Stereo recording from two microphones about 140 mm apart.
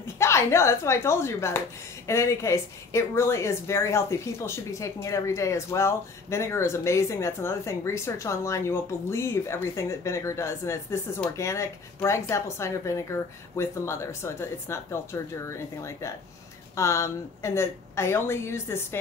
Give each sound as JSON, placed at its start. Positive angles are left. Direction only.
{"t": 0.0, "sound": "speech", "side_deg": 20}